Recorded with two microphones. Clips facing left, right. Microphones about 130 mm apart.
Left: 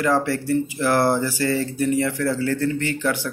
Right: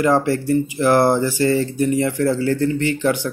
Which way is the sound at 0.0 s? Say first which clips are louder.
Right 4 dB; 20° right (ahead or behind).